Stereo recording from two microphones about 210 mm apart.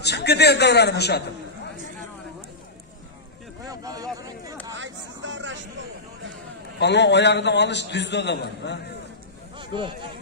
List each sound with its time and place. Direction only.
0.0 s a man's voice: 50° left (ahead or behind)
3.6 s a sound: 15° right (ahead or behind)
4.7 s vehicle: 60° right (ahead or behind)
6.8 s a man's voice: 55° left (ahead or behind)
9.6 s speech: 25° right (ahead or behind)